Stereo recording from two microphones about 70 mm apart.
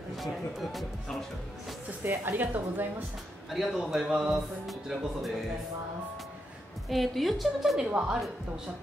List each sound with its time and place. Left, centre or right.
0.1 s speech: centre
2.0 s a woman's voice: right
3.4 s a man's voice: centre
6.9 s a man's voice: centre
7.8 s a woman's voice: centre